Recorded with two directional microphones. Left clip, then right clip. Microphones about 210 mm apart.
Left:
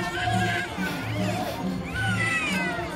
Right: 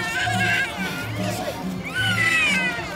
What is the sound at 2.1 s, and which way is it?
Cat, 35° right (ahead or behind).